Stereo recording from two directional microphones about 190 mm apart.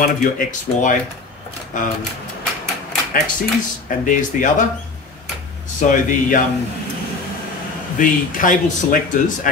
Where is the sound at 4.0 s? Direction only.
45° left (ahead or behind).